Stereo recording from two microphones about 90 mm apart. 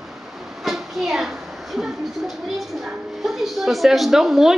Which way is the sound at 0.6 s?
Centre (ahead or behind).